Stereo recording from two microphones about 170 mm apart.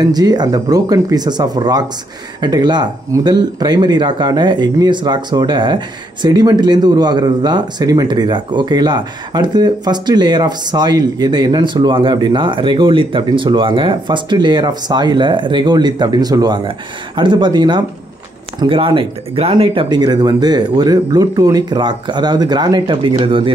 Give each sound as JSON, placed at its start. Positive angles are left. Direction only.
{"t": 0.0, "sound": "speech", "side_deg": -20}